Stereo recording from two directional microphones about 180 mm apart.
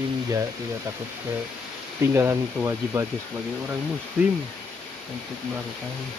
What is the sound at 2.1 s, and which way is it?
Speech, 15° right (ahead or behind).